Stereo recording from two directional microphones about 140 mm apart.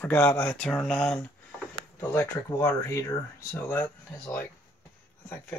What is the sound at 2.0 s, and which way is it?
Speech, 20° left (ahead or behind).